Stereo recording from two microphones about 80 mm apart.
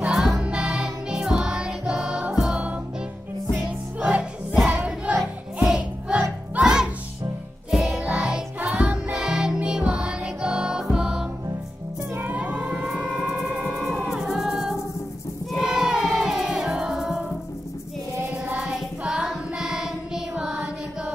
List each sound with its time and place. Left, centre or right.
0.0 s music: centre
4.0 s music: centre
8.0 s music: centre
13.3 s music: centre
18.4 s music: centre